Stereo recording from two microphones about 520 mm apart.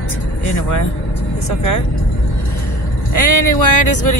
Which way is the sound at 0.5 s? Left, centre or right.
Left.